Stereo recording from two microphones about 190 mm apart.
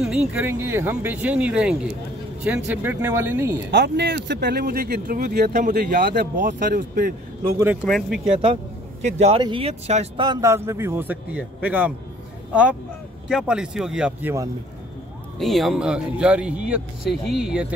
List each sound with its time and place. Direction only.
0.0 s speech: 5° right (ahead or behind)
3.7 s speech: 65° right (ahead or behind)
7.5 s speech: 10° right (ahead or behind)
7.8 s speech: 5° left (ahead or behind)
9.0 s speech: 35° right (ahead or behind); by 11.9 s 10° right (ahead or behind)
13.3 s speech: 5° right (ahead or behind)
15.3 s speech: centre (ahead or behind)